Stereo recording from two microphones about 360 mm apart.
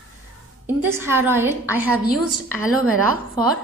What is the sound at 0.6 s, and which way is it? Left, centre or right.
A woman's voice, centre.